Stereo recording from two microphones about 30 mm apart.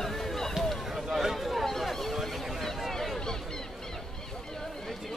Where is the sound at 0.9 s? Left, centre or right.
Centre.